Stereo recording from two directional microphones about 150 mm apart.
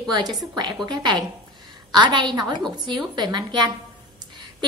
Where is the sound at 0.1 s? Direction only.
30° right (ahead or behind).